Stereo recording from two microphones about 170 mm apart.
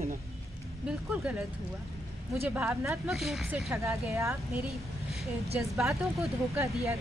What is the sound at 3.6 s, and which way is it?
Speech, 15° right (ahead or behind).